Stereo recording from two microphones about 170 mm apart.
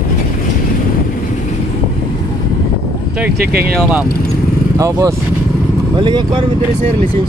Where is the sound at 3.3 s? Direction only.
65° right (ahead or behind).